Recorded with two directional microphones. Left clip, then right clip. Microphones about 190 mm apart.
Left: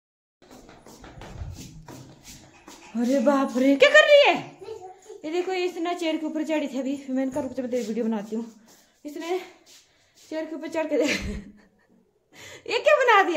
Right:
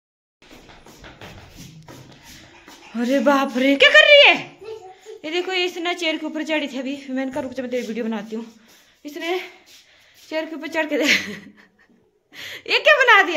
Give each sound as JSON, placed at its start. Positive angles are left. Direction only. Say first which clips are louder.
{"t": 2.9, "sound": "a woman's voice", "louder": "right 4 dB", "side_deg": 5}